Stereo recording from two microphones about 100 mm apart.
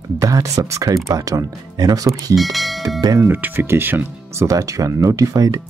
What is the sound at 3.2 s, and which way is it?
Speech, 20° right (ahead or behind).